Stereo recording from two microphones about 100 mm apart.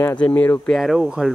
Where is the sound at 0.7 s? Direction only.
Centre (ahead or behind).